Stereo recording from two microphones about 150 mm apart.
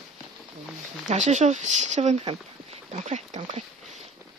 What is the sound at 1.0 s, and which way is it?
Speech, 50° right (ahead or behind).